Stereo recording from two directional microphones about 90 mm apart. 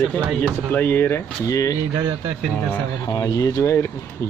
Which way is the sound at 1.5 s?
40° left (ahead or behind).